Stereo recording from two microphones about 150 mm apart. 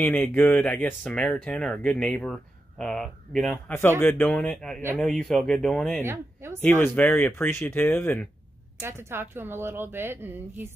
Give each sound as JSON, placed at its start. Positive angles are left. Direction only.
{"t": 0.0, "sound": "speech", "side_deg": 10}
{"t": 6.0, "sound": "speech", "side_deg": -15}
{"t": 6.6, "sound": "speech", "side_deg": 15}
{"t": 8.8, "sound": "speech", "side_deg": -15}